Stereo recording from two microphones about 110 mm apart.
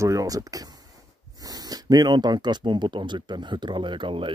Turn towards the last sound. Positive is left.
turn(degrees=-50)  # may be behind; listen again after turning